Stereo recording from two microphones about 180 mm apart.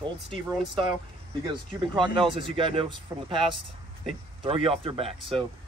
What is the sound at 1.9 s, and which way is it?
Speech, 25° right (ahead or behind).